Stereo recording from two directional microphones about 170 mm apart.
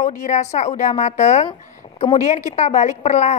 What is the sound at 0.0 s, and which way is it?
Speech, 45° left (ahead or behind).